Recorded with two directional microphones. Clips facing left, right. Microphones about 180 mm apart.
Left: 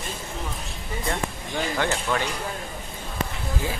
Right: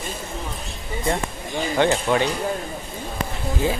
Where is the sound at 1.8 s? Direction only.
20° right (ahead or behind).